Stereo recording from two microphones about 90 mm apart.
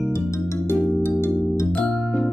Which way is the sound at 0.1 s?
30° left (ahead or behind).